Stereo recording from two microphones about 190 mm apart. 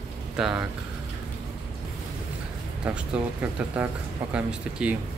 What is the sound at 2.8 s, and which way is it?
Speech, 10° right (ahead or behind).